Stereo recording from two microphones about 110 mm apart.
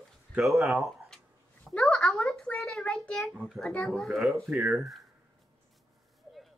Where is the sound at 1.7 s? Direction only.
5° left (ahead or behind).